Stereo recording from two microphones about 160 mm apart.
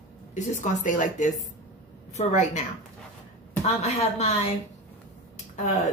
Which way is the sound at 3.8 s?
45° left (ahead or behind).